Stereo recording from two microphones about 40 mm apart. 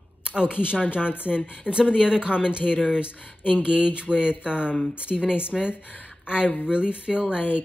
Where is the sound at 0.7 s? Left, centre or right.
Left.